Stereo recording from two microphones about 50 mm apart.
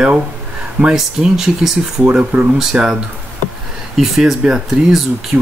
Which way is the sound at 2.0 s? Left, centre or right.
Right.